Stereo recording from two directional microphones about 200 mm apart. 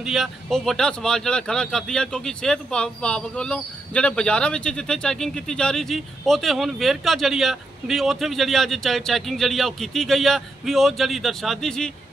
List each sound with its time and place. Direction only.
0.0 s speech: centre (ahead or behind)